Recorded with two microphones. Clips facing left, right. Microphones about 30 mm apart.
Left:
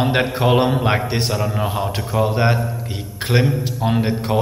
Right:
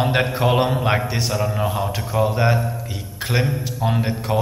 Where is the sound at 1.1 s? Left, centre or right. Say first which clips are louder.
Left 2 dB; left.